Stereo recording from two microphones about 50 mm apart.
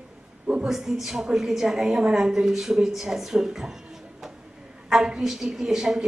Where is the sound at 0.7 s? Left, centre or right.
Centre.